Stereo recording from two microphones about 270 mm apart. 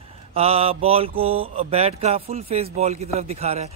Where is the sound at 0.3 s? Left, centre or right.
Right.